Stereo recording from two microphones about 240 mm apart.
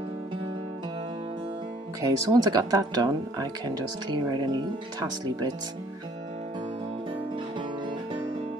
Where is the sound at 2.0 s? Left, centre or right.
Centre.